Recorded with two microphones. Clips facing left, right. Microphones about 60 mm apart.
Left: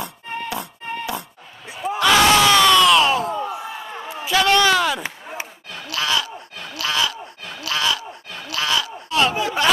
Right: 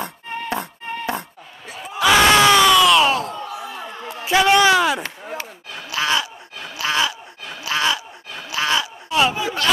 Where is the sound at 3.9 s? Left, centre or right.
Centre.